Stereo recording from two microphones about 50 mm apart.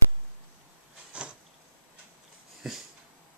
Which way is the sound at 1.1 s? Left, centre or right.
Right.